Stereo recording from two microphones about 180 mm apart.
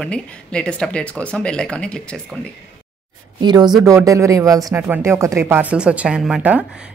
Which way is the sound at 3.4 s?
25° right (ahead or behind).